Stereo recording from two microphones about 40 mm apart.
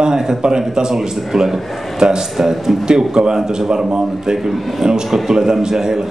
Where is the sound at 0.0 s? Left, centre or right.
Centre.